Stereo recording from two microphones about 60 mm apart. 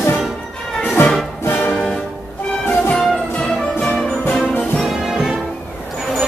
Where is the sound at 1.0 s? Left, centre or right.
Left.